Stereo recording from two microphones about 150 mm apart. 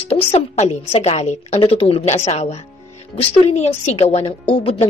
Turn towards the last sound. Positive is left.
turn(degrees=45)  # may be behind; listen again after turning